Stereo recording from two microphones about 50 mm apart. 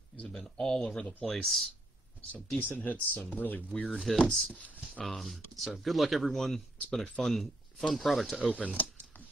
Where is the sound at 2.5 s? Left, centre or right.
Left.